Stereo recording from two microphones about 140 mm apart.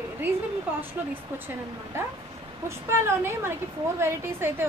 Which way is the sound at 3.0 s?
20° right (ahead or behind).